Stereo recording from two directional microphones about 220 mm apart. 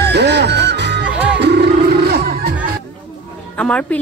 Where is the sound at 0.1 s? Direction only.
50° right (ahead or behind).